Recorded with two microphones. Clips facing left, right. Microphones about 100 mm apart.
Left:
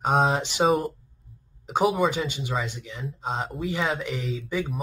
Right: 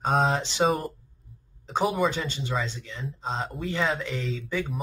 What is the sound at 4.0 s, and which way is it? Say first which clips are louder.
Speech: left 1 dB; 15° left (ahead or behind).